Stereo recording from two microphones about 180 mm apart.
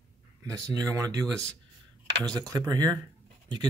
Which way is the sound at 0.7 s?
20° right (ahead or behind).